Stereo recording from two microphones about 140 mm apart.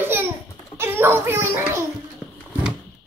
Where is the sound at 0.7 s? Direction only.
15° right (ahead or behind).